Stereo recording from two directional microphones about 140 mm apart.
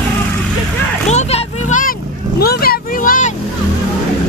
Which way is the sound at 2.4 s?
90° left.